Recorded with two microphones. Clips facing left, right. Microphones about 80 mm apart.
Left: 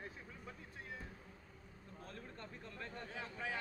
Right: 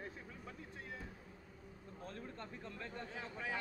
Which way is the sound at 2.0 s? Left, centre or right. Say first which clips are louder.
Right 3 dB; right.